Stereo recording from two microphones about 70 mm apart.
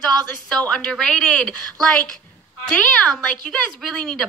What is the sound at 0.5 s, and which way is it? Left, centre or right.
A woman's voice, centre.